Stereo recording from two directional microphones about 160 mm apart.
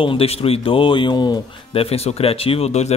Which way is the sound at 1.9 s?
40° left (ahead or behind).